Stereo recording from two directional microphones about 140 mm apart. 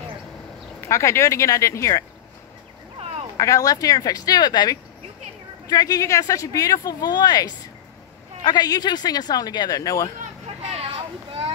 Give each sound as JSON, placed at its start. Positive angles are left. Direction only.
{"t": 0.7, "sound": "speech", "side_deg": 20}
{"t": 3.3, "sound": "speech", "side_deg": 25}
{"t": 10.4, "sound": "vehicle", "side_deg": -45}